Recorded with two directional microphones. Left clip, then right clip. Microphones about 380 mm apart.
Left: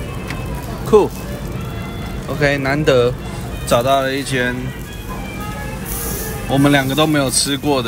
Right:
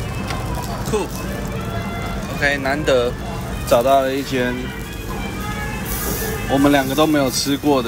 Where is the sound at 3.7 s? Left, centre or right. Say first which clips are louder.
Even; left.